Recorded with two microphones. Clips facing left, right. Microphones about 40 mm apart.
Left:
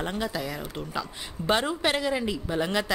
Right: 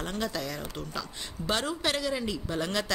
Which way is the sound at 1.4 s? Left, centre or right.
Left.